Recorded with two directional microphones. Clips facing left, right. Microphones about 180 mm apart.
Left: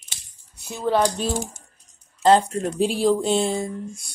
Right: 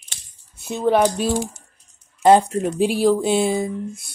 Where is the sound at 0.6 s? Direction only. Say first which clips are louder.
Right 4 dB; 20° right (ahead or behind).